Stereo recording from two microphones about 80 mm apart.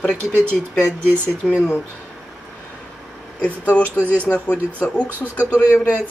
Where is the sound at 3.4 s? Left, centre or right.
Centre.